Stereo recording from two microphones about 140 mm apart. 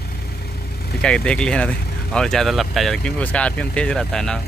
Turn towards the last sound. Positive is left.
turn(degrees=5)  # may be behind; listen again after turning